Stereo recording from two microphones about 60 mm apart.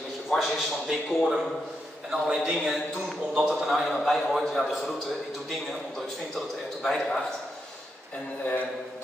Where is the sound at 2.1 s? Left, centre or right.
Centre.